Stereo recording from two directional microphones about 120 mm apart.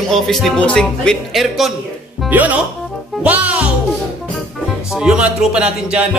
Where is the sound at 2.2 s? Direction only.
15° right (ahead or behind).